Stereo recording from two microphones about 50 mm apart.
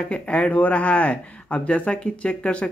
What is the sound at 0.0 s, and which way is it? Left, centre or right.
Speech, left.